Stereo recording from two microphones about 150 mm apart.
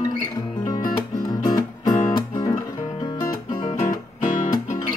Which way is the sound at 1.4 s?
25° left (ahead or behind).